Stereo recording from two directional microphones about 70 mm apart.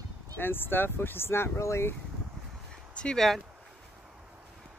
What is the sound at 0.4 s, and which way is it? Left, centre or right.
Speech, left.